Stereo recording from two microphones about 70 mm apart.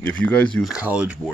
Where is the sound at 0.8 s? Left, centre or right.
Right.